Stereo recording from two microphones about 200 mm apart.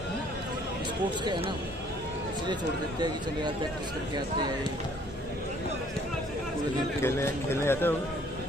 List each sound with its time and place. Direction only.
1.2 s speech: 20° right (ahead or behind)
7.6 s speech: 10° left (ahead or behind)